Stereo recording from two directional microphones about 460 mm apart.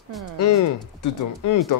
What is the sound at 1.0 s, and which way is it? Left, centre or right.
Speech, left.